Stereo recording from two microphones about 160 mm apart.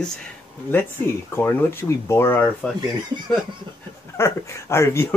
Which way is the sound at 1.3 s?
15° left (ahead or behind).